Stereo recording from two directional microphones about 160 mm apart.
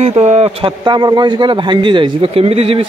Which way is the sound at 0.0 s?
45° right (ahead or behind).